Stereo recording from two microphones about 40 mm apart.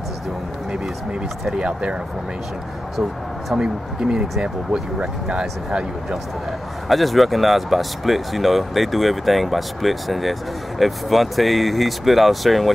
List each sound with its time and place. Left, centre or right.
1.6 s speech: right
3.5 s speech: right
6.9 s speech: centre